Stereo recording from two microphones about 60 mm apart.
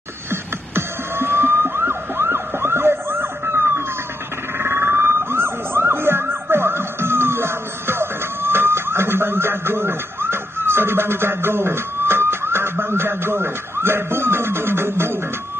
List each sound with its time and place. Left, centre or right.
0.3 s music: right
4.6 s emergency vehicle: right